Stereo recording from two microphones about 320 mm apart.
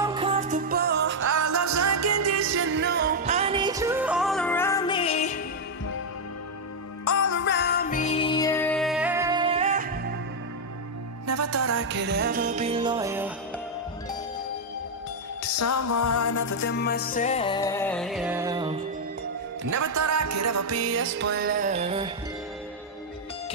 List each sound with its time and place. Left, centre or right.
0.0 s music: centre; by 1.2 s right
1.3 s music: right; by 5.4 s left
7.1 s music: left
7.3 s music: left; by 9.9 s right
11.2 s music: right; by 13.3 s centre
15.4 s music: left
16.5 s music: left; by 18.8 s centre
19.6 s music: right; by 22.1 s centre